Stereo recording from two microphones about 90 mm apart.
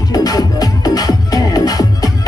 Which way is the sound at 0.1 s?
45° left (ahead or behind).